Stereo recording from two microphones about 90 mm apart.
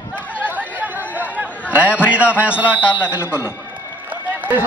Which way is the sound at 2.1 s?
15° right (ahead or behind).